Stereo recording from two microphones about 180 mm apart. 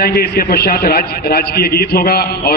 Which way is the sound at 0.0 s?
60° left (ahead or behind).